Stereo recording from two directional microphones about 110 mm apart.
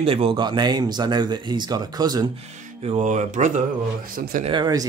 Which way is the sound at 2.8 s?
80° right.